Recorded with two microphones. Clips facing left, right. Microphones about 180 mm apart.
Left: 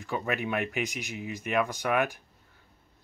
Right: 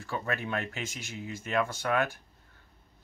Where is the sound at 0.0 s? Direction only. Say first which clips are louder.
Left 3 dB; 15° left (ahead or behind).